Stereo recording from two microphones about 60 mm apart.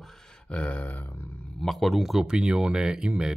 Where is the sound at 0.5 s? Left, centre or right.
Left.